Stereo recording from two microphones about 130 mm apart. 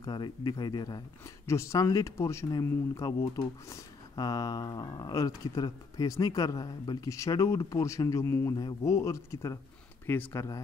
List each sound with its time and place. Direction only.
0.0 s speech: 35° left (ahead or behind)